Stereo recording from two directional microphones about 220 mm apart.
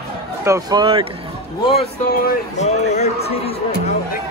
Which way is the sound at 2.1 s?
35° left (ahead or behind).